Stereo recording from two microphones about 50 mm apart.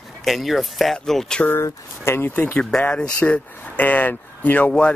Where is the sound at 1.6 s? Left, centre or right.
Left.